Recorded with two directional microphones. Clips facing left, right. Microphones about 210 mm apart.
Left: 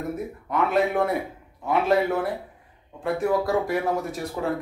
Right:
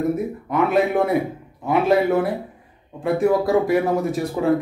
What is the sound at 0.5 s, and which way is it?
Speech, 10° right (ahead or behind).